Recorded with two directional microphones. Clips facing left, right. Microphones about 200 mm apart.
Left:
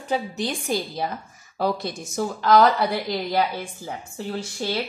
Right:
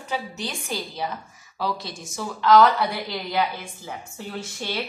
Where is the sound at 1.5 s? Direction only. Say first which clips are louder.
Left 4 dB; 55° left (ahead or behind).